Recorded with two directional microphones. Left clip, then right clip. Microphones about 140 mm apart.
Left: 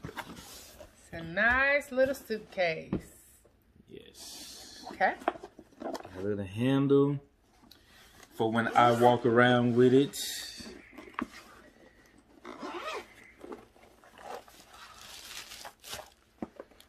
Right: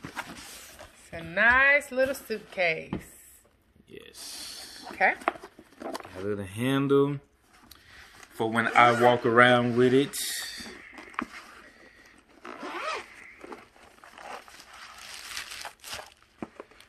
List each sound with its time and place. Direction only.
1.1 s speech: 20° right (ahead or behind)
3.9 s a sound: 25° left (ahead or behind)
5.8 s roaring cats: 25° left (ahead or behind)
6.2 s speech: 20° left (ahead or behind)
8.2 s speech: 25° left (ahead or behind)
9.3 s a sound: 20° left (ahead or behind)
12.8 s zipper: 20° left (ahead or behind)